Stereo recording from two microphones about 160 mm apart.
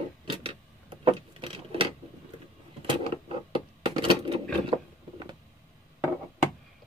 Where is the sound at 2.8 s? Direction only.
35° right (ahead or behind).